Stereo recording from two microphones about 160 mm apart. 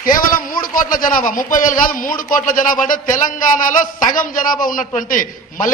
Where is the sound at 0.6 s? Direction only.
60° left (ahead or behind).